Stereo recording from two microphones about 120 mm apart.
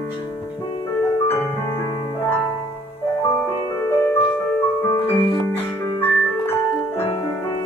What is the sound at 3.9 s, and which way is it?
Music, 20° left (ahead or behind).